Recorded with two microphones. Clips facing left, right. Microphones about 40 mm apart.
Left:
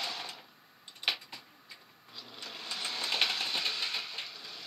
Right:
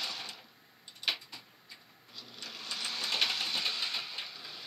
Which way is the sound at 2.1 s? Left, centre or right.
Left.